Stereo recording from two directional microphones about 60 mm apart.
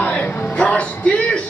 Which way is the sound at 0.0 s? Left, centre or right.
Left.